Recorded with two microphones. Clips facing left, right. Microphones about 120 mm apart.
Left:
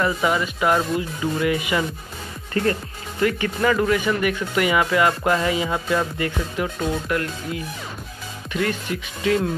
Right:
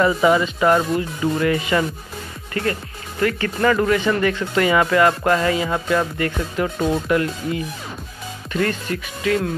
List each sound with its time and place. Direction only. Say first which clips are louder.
0.0 s speech: right 5 dB; centre (ahead or behind)
3.2 s speech: right 1 dB; 15° left (ahead or behind)
7.1 s speech: right 5 dB; 5° right (ahead or behind)
8.5 s speech: right 2 dB; 10° left (ahead or behind)
9.2 s speech: even; 25° left (ahead or behind)